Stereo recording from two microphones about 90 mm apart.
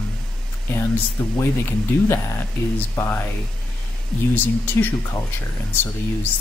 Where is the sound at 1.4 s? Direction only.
25° left (ahead or behind).